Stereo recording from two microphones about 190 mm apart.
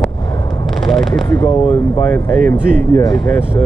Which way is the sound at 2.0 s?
10° left (ahead or behind).